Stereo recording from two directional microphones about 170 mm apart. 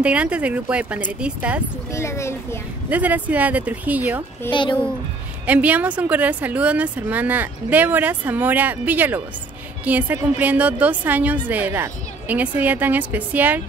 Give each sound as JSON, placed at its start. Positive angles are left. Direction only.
{"t": 0.0, "sound": "a woman's voice", "side_deg": -5}
{"t": 1.9, "sound": "speech", "side_deg": 15}
{"t": 2.9, "sound": "a woman's voice", "side_deg": -10}
{"t": 4.5, "sound": "speech", "side_deg": 30}
{"t": 5.5, "sound": "a woman's voice", "side_deg": -10}